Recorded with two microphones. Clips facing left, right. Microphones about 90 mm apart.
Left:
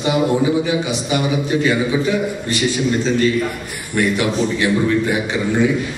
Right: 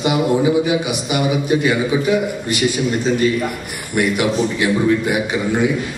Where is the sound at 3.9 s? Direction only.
15° right (ahead or behind).